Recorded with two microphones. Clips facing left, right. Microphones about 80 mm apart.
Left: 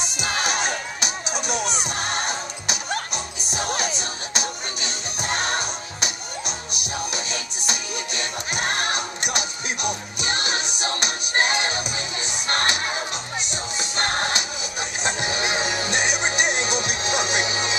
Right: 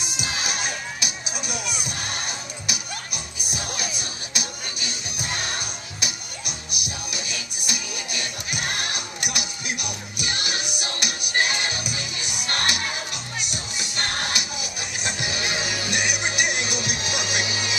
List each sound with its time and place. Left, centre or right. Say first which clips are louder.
0.3 s music: left 5 dB; left